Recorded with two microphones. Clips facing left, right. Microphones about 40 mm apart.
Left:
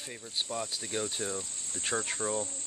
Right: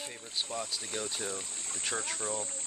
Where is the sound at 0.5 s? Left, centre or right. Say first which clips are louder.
Left 2 dB; centre.